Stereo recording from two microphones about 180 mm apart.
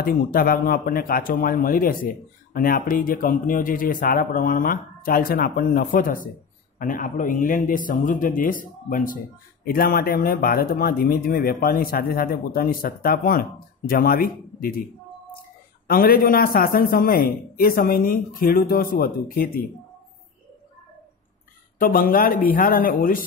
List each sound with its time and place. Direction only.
0.0 s a man's voice: 55° left (ahead or behind)
15.9 s speech: 55° left (ahead or behind)
21.7 s speech: 50° left (ahead or behind)